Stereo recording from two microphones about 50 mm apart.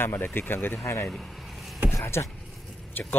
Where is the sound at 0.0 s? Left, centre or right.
Left.